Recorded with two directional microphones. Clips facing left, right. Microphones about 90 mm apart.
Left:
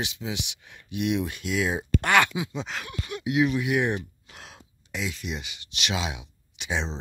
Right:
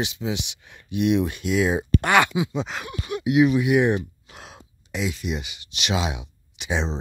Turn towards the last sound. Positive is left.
turn(degrees=-20)  # may be behind; listen again after turning